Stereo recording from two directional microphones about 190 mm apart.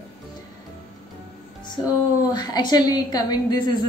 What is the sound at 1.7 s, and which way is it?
Speech, 20° left (ahead or behind).